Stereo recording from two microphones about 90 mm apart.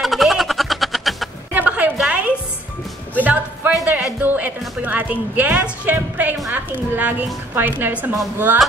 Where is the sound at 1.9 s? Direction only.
15° right (ahead or behind).